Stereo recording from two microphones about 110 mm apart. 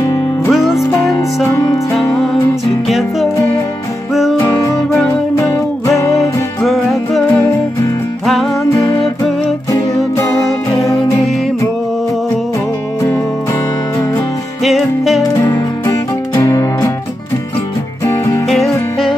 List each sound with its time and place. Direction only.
0.5 s music: centre (ahead or behind)
0.9 s music: 25° left (ahead or behind)
2.9 s music: centre (ahead or behind)
4.4 s music: 30° left (ahead or behind)
6.6 s music: centre (ahead or behind)
7.2 s music: 25° left (ahead or behind)
14.6 s music: centre (ahead or behind)
15.4 s music: 25° left (ahead or behind)
18.0 s music: 25° left (ahead or behind)